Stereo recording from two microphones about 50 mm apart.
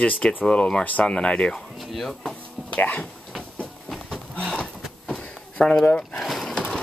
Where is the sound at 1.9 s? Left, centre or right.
Centre.